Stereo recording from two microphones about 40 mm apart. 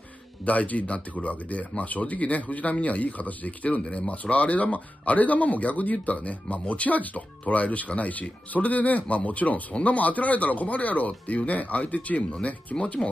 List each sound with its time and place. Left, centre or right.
0.5 s speech: left
3.8 s speech: left